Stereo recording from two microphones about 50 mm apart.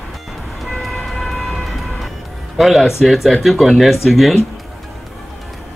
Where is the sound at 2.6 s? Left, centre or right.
Centre.